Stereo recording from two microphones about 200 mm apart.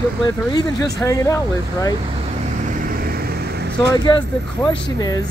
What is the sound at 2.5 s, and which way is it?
Vehicle, 45° right (ahead or behind).